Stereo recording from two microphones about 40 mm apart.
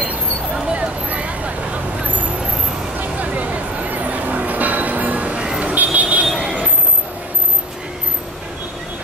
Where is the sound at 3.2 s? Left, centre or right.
Right.